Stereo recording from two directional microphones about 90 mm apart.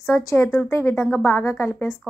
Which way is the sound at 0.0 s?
35° left (ahead or behind).